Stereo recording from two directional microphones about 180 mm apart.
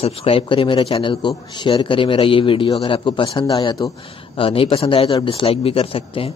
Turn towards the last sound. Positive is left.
turn(degrees=30)  # may be behind; listen again after turning